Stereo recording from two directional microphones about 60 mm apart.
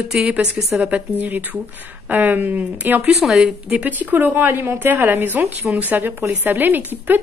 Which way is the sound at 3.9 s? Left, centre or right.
Right.